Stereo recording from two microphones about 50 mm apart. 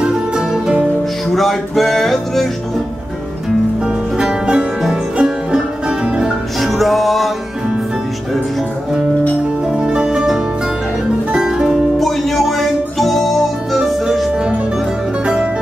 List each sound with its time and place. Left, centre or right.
0.0 s music: centre
1.3 s music: centre
3.8 s music: centre
6.6 s music: centre
9.8 s music: centre
12.0 s music: centre
14.3 s music: right